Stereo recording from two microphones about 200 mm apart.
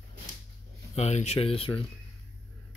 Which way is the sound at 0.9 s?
35° left (ahead or behind).